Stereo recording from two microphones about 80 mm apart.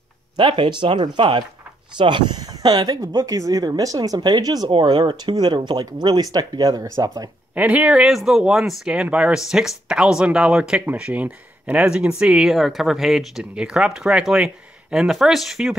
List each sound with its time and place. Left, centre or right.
0.4 s speech: right
4.6 s speech: right
7.5 s speech: centre
8.1 s speech: centre